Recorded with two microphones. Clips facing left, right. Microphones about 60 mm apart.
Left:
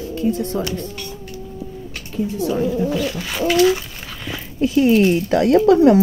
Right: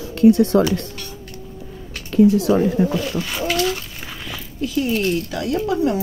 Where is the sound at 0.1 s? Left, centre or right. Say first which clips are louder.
Right 9 dB; right.